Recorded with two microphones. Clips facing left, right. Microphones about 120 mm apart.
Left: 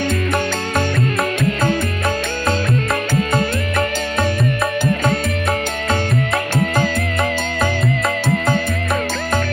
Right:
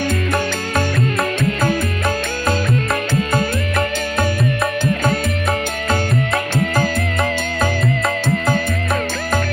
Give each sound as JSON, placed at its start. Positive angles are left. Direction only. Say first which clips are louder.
{"t": 0.7, "sound": "music", "louder": "even", "side_deg": 0}
{"t": 6.5, "sound": "music", "louder": "left 1 dB", "side_deg": 0}